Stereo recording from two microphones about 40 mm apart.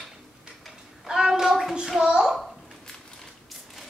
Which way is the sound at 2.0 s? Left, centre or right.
Centre.